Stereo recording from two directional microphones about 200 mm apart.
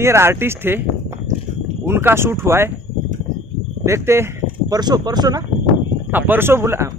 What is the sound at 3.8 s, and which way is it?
Speech, 15° right (ahead or behind).